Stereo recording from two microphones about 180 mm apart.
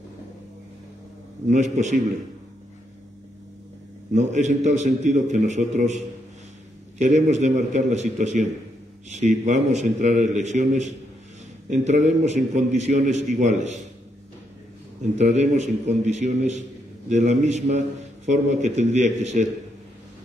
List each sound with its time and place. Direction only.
1.5 s a man's voice: 40° right (ahead or behind)
4.1 s a man's voice: 40° right (ahead or behind)
7.0 s a man's voice: 40° right (ahead or behind)
15.1 s a man's voice: 40° right (ahead or behind)